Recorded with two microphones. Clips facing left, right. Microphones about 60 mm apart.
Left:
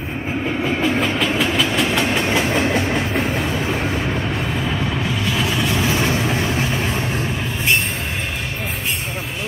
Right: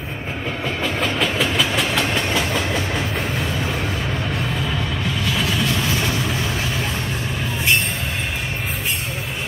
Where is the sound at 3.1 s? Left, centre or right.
Centre.